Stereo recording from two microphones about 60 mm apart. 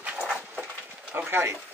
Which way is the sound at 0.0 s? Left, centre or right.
Centre.